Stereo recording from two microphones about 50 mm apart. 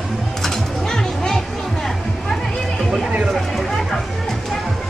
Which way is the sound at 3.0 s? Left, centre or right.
Right.